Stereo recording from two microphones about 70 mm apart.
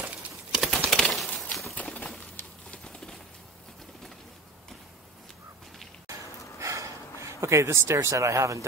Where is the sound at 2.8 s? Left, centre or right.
Centre.